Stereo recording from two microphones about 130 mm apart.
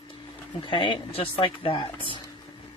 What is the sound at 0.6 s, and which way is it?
Speech, 40° left (ahead or behind).